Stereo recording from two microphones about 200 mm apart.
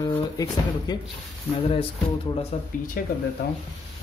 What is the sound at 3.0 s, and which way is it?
Speech, 45° left (ahead or behind).